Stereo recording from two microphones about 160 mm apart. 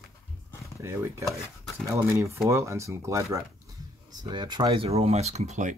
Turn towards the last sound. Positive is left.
turn(degrees=-50)  # may be behind; listen again after turning